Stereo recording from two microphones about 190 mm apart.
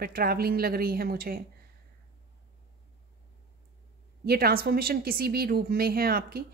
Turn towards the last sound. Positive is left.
turn(degrees=-50)  # may be behind; listen again after turning